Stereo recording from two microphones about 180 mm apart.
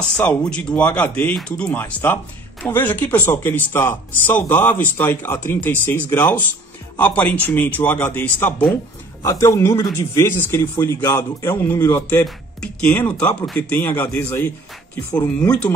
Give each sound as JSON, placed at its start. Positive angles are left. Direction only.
{"t": 0.2, "sound": "a man's voice", "side_deg": 5}